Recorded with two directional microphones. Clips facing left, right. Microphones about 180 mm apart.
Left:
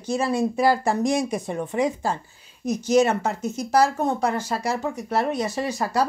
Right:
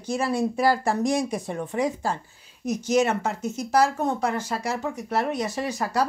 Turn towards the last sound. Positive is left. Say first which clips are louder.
# left 2 dB
turn(degrees=30)  # may be behind; listen again after turning